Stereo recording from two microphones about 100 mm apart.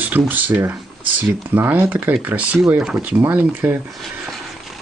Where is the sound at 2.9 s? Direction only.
20° right (ahead or behind).